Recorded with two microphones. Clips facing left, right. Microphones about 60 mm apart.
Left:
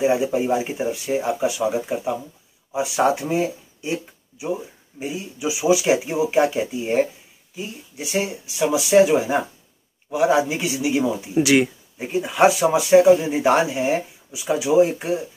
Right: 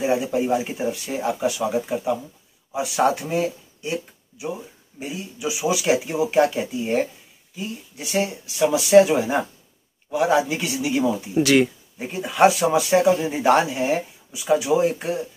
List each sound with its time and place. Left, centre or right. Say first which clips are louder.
0.0 s speech: left 2 dB; centre